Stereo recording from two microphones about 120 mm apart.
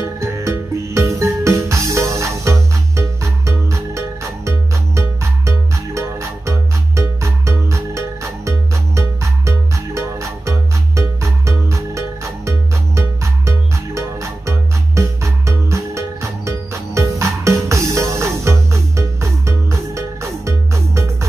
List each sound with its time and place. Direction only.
0.0 s music: 25° right (ahead or behind)